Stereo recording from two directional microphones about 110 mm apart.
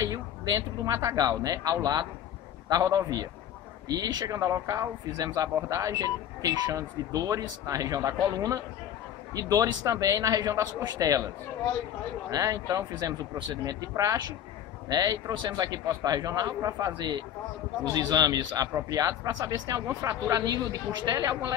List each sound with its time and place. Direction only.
0.0 s a man's voice: 35° right (ahead or behind)
12.3 s a man's voice: 30° right (ahead or behind)